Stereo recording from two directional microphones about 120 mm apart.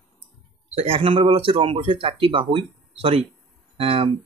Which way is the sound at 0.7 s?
55° right (ahead or behind).